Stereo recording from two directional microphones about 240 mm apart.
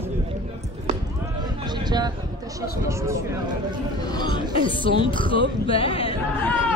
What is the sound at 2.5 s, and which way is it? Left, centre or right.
Speech, centre.